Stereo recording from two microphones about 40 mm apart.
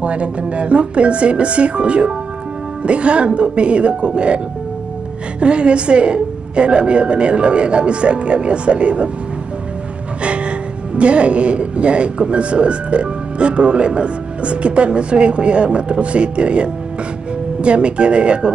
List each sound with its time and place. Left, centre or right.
0.0 s speech: right
5.4 s speech: right
10.2 s music: right
11.0 s speech: right